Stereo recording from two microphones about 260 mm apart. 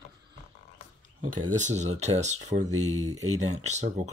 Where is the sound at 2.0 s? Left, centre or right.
Right.